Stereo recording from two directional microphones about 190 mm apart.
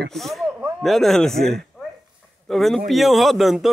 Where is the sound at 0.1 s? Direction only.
Centre (ahead or behind).